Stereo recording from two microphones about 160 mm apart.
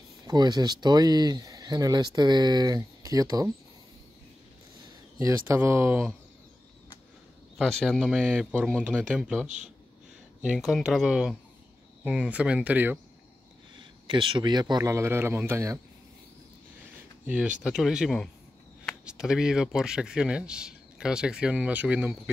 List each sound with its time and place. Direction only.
0.3 s speech: 25° right (ahead or behind)
5.2 s speech: 15° right (ahead or behind)
7.5 s speech: centre (ahead or behind)
13.7 s speech: 35° right (ahead or behind); by 15.8 s 15° right (ahead or behind)
17.3 s speech: 5° right (ahead or behind)